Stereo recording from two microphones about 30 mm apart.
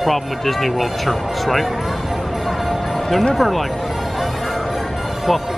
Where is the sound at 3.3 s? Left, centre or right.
Centre.